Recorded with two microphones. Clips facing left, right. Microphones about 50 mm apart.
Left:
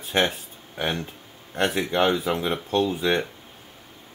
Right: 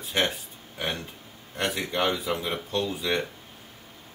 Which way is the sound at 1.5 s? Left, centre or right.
Left.